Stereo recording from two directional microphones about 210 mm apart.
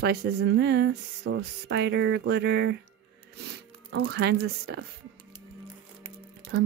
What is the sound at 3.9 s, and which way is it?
Speech, 90° right.